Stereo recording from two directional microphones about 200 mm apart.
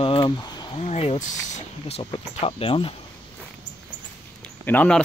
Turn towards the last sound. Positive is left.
turn(degrees=5)  # may be behind; listen again after turning